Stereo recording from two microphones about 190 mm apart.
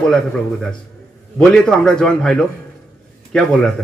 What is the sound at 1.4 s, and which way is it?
Speech, 5° left (ahead or behind).